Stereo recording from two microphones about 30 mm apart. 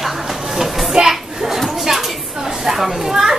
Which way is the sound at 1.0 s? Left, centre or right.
Right.